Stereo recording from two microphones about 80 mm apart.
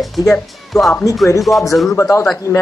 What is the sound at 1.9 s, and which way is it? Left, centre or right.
Speech, left.